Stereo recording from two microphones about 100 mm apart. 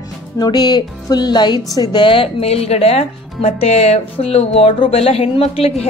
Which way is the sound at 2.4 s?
90° left.